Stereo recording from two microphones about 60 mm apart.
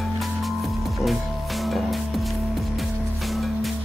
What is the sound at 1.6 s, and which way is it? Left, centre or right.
Music, centre.